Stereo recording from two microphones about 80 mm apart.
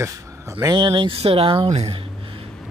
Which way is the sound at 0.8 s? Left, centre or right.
Right.